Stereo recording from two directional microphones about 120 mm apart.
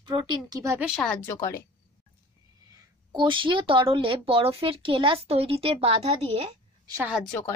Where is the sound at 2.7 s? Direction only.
35° right (ahead or behind); by 6.1 s 55° right (ahead or behind).